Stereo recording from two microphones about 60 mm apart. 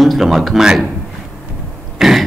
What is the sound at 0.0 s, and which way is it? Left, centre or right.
Speech, centre.